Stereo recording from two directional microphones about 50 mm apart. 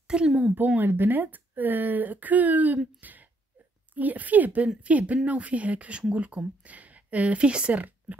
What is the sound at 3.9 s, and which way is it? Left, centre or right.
Speech, right.